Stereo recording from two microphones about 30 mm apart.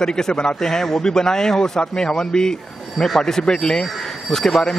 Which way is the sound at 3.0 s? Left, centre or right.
Centre.